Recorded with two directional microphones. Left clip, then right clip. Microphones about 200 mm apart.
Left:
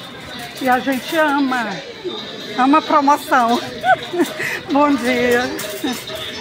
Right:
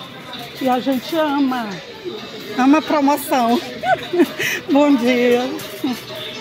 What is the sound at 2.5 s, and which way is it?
Speech, 35° right (ahead or behind).